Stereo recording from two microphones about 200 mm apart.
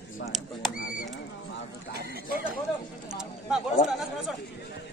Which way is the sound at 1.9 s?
50° right (ahead or behind).